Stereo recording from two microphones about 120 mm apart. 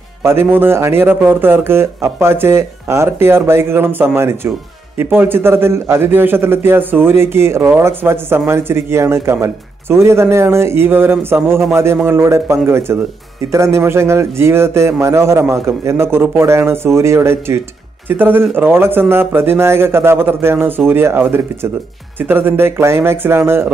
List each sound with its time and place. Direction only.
0.2 s speech: 20° right (ahead or behind)